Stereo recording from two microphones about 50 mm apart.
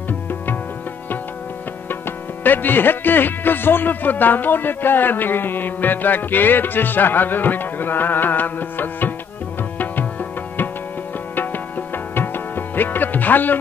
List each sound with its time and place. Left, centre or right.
2.4 s speech: left
11.3 s music: left